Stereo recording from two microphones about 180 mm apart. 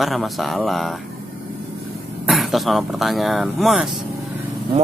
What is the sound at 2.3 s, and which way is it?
Speech, centre (ahead or behind).